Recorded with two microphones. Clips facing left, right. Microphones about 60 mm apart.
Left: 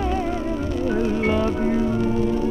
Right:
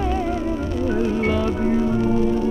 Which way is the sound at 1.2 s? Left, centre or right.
Centre.